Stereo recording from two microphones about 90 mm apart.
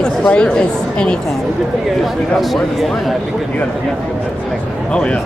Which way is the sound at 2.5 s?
Centre (ahead or behind).